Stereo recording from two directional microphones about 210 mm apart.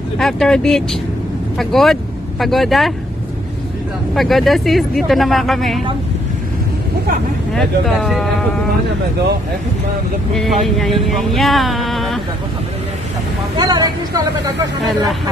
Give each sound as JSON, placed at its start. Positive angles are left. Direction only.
{"t": 0.2, "sound": "speech", "side_deg": 5}
{"t": 4.1, "sound": "speech", "side_deg": 0}
{"t": 7.5, "sound": "speech", "side_deg": 0}
{"t": 10.3, "sound": "speech", "side_deg": 0}
{"t": 13.6, "sound": "speech", "side_deg": -20}